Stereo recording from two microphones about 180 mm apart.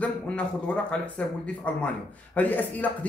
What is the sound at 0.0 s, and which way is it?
Speech, 5° left (ahead or behind).